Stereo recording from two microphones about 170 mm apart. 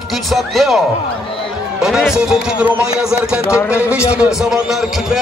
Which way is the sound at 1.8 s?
Centre (ahead or behind).